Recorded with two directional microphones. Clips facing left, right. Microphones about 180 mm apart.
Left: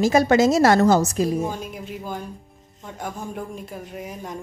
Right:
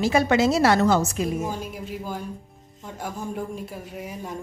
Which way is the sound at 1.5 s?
5° right (ahead or behind).